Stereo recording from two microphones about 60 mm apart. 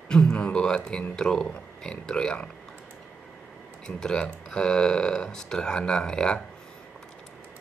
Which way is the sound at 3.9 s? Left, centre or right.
Centre.